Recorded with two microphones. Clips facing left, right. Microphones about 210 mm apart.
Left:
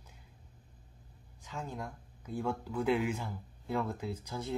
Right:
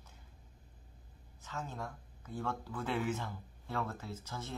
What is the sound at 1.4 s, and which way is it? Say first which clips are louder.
Speech: left 2 dB; 10° left (ahead or behind).